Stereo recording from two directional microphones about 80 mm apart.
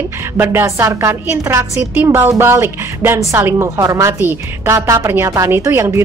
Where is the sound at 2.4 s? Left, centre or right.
Right.